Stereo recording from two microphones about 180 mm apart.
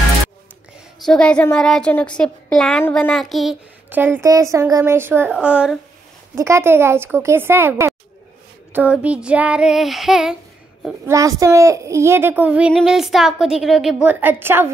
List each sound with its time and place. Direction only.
1.0 s a woman's voice: 5° left (ahead or behind)
11.1 s a woman's voice: 20° right (ahead or behind)